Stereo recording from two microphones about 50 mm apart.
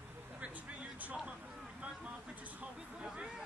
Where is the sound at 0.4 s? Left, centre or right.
Right.